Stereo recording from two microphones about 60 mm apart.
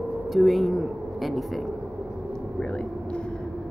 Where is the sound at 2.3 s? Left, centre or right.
Centre.